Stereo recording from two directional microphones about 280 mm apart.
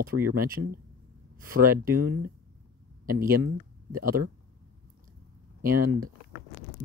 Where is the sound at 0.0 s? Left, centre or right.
Right.